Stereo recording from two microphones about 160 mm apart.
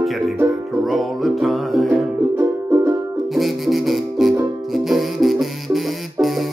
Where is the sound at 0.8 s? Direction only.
Centre (ahead or behind).